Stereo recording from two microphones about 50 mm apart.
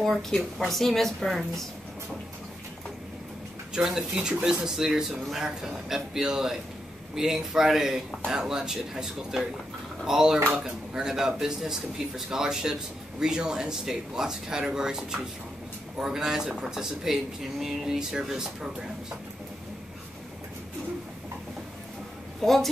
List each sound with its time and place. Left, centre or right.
0.6 s a woman's voice: centre
4.1 s speech: centre
22.4 s a woman's voice: centre